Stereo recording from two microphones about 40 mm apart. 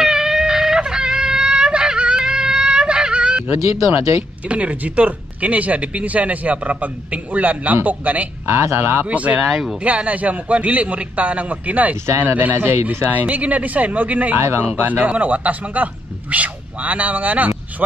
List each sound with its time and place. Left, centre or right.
0.0 s a sound: centre
4.5 s speech: right
8.5 s speech: right
9.1 s speech: right
12.5 s speech: right
12.8 s speech: right